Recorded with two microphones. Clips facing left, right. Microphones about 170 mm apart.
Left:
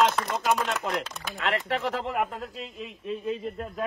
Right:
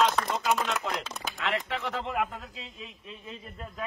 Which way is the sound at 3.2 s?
55° left (ahead or behind).